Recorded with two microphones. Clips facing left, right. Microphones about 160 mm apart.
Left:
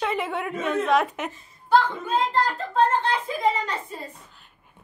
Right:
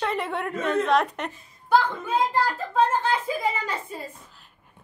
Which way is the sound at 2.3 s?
5° right (ahead or behind).